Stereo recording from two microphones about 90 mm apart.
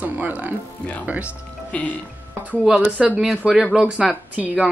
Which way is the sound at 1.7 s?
15° left (ahead or behind).